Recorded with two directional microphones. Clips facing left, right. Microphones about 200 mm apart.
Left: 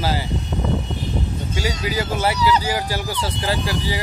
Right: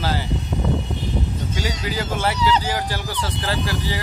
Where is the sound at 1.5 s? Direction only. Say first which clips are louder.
Left 2 dB; 10° left (ahead or behind).